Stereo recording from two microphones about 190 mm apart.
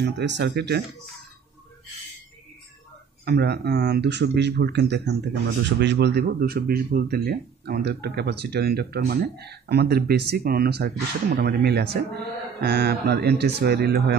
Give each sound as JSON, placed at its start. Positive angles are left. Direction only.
{"t": 0.0, "sound": "speech", "side_deg": -65}
{"t": 3.3, "sound": "speech", "side_deg": -60}